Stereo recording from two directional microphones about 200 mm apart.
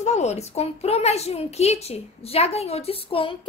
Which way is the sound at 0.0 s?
35° left (ahead or behind).